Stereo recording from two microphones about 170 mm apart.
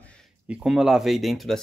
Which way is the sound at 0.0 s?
5° left (ahead or behind).